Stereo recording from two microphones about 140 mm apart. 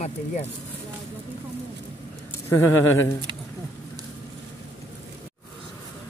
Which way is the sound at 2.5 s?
20° left (ahead or behind).